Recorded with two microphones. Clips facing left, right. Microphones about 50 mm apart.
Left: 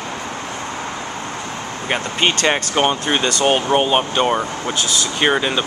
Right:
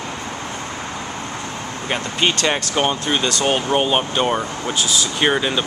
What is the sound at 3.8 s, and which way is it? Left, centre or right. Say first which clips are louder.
Speech: left 2 dB; centre.